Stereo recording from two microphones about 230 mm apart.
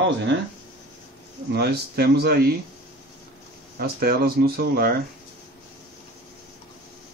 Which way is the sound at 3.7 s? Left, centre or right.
Right.